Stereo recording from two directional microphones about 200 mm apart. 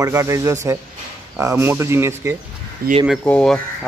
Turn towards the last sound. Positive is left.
turn(degrees=5)  # may be behind; listen again after turning